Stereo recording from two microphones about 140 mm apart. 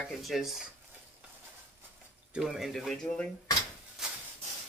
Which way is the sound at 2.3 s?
Centre (ahead or behind).